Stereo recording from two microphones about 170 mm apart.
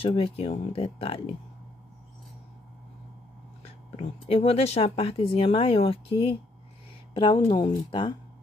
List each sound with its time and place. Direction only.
0.0 s speech: 35° left (ahead or behind)
3.6 s speech: 35° left (ahead or behind)